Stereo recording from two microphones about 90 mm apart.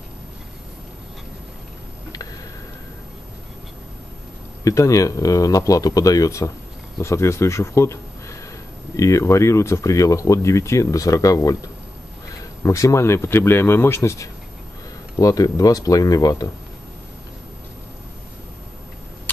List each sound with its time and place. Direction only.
4.6 s a man's voice: 35° left (ahead or behind)
12.6 s speech: 35° left (ahead or behind)